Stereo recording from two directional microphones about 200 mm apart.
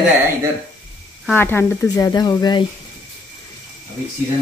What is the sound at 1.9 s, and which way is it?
Speech, 20° left (ahead or behind).